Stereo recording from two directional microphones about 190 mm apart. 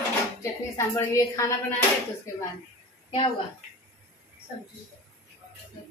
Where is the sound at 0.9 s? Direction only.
15° left (ahead or behind).